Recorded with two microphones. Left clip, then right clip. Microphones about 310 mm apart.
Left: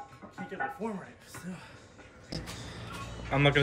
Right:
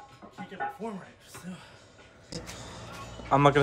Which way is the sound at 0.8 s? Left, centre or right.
Centre.